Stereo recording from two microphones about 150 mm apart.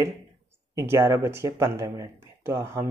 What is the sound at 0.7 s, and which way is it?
Speech, 20° right (ahead or behind).